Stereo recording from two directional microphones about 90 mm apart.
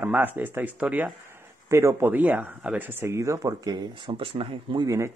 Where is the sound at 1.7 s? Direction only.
30° right (ahead or behind).